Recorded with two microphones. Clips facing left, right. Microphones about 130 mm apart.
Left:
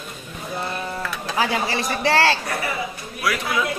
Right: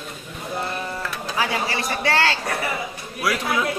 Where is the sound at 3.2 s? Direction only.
25° right (ahead or behind).